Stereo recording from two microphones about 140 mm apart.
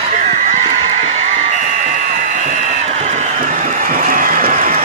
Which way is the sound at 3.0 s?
55° right (ahead or behind).